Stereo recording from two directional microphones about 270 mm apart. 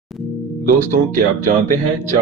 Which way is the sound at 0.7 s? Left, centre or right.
Right.